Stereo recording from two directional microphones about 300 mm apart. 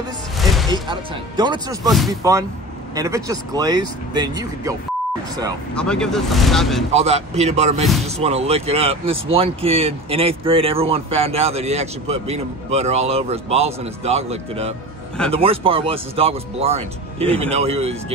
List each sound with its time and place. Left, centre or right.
0.4 s music: centre
0.7 s speech: centre
1.9 s speech: centre
2.9 s speech: centre
5.8 s speech: centre
6.9 s speech: right